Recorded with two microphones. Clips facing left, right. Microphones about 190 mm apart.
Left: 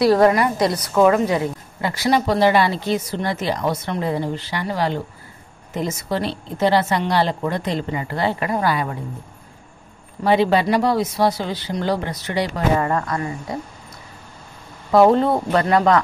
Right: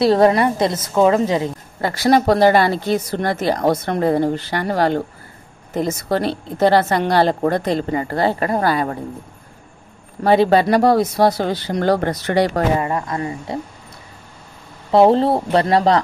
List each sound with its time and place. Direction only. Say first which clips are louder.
0.0 s a woman's voice: right 1 dB; 25° right (ahead or behind)
1.8 s speech: right 4 dB; 40° right (ahead or behind)
5.8 s a woman's voice: right 4 dB; 40° right (ahead or behind)
10.2 s speech: right 3 dB; 40° right (ahead or behind)
12.7 s a woman's voice: even; 15° right (ahead or behind)
14.9 s a woman's voice: right 1 dB; 30° right (ahead or behind)